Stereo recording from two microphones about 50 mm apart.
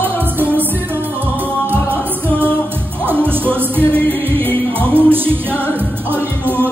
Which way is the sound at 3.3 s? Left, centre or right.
Right.